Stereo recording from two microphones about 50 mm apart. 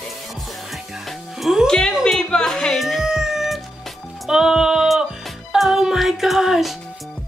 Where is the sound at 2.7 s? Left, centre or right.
Centre.